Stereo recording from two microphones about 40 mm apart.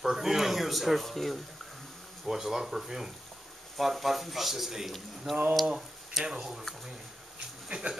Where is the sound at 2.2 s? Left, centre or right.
Centre.